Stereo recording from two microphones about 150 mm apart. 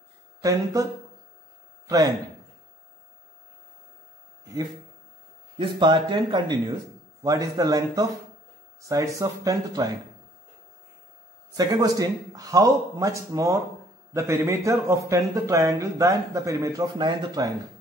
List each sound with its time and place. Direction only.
0.4 s speech: 20° right (ahead or behind)
1.9 s speech: 25° right (ahead or behind)
5.6 s speech: 35° right (ahead or behind)
11.5 s speech: 25° right (ahead or behind)